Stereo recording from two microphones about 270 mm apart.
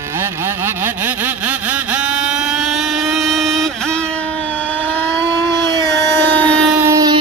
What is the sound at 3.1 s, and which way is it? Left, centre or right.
Vehicle, centre.